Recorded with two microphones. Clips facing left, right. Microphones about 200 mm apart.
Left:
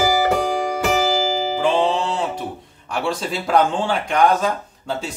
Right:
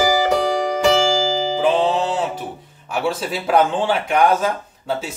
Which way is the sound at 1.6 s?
5° right (ahead or behind).